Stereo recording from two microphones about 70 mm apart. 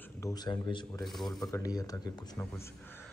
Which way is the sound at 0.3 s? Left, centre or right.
Left.